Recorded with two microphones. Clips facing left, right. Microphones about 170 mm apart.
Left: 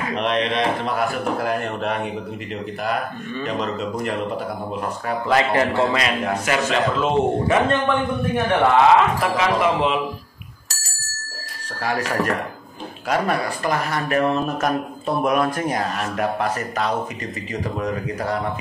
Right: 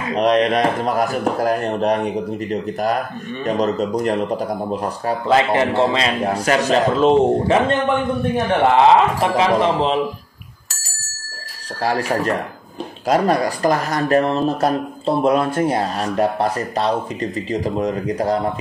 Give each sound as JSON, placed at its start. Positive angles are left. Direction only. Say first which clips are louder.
{"t": 0.1, "sound": "speech", "louder": "right 7 dB", "side_deg": -40}
{"t": 5.3, "sound": "a man's voice", "louder": "right 3 dB", "side_deg": -20}
{"t": 8.7, "sound": "speech", "louder": "right 2 dB", "side_deg": -30}
{"t": 11.8, "sound": "speech", "louder": "right 3 dB", "side_deg": -35}